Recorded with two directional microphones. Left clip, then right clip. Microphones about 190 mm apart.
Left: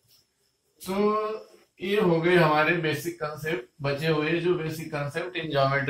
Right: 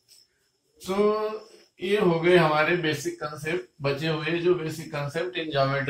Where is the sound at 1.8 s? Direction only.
10° left (ahead or behind).